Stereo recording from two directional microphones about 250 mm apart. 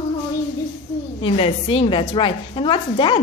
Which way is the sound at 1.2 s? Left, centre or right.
Left.